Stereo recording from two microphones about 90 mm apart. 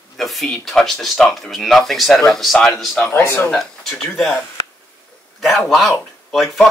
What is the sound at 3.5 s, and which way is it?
Speech, 5° left (ahead or behind).